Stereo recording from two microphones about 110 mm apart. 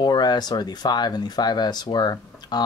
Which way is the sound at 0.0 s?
40° left (ahead or behind).